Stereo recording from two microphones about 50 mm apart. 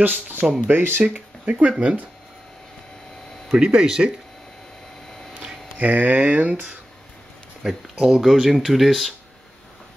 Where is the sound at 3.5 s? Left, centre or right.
Centre.